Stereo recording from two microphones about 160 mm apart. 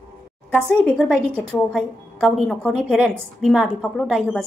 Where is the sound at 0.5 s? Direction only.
5° left (ahead or behind).